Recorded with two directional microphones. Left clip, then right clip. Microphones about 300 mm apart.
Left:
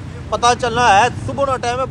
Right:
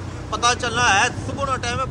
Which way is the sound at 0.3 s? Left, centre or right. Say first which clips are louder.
Left 5 dB; centre.